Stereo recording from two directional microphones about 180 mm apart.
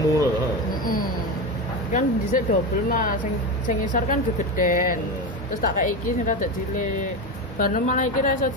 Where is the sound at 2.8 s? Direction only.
50° left (ahead or behind).